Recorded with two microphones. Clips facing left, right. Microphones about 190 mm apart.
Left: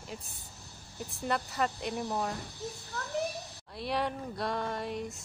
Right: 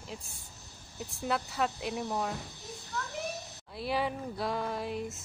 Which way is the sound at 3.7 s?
Centre (ahead or behind).